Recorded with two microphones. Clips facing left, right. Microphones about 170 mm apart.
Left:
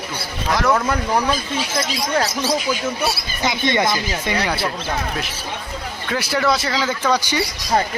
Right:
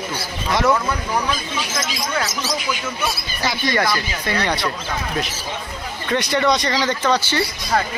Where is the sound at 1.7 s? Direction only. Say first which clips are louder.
Left 5 dB; 35° left (ahead or behind).